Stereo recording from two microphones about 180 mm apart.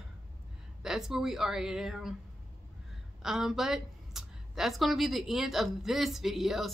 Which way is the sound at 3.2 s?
5° right (ahead or behind).